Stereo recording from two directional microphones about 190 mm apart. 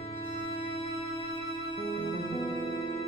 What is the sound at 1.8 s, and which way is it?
Music, 30° left (ahead or behind).